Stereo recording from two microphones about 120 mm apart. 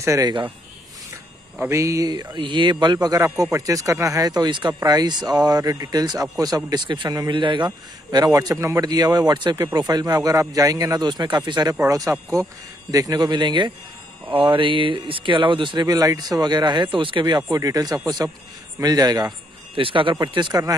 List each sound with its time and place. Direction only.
0.0 s speech: 25° right (ahead or behind)
1.6 s speech: 25° right (ahead or behind)
2.3 s a man's voice: 40° right (ahead or behind)
11.8 s a man's voice: 25° right (ahead or behind); by 17.4 s 40° right (ahead or behind)
17.4 s a man's voice: 30° right (ahead or behind)
19.7 s a man's voice: 45° right (ahead or behind)